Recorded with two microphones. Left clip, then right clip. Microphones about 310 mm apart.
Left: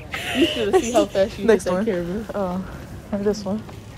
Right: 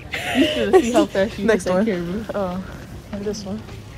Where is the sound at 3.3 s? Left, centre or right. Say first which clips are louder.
Left 5 dB; left.